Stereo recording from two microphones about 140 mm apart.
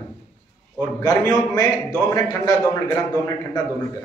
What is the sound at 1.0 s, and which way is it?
A man's voice, 25° left (ahead or behind).